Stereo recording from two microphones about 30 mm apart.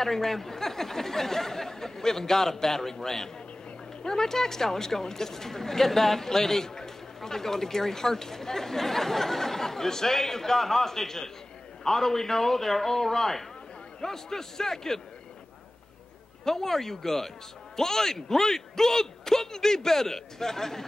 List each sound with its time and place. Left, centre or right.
0.0 s speech: centre
16.4 s speech: centre